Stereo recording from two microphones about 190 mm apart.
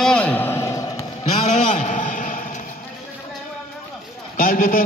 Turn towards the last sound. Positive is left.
turn(degrees=50)  # may be behind; listen again after turning